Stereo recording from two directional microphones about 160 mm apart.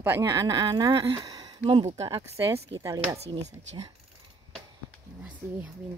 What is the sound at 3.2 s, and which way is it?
Speech, 45° right (ahead or behind).